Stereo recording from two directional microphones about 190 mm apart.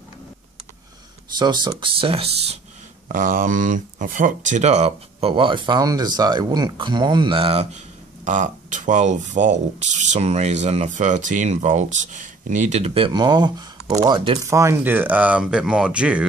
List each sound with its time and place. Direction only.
1.4 s speech: 25° right (ahead or behind)
3.1 s speech: 45° right (ahead or behind)
8.3 s speech: 40° right (ahead or behind); by 14.5 s 25° right (ahead or behind)
14.5 s speech: 15° right (ahead or behind)